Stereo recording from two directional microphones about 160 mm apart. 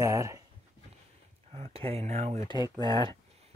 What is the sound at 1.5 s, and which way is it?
Speech, 40° right (ahead or behind).